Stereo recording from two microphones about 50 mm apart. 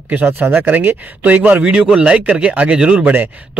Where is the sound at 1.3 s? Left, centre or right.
Right.